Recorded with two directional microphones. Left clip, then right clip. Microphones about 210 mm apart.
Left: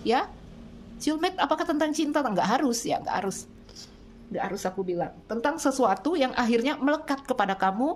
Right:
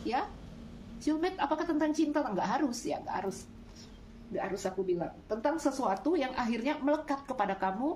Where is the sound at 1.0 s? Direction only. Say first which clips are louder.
Left 5 dB; 55° left (ahead or behind).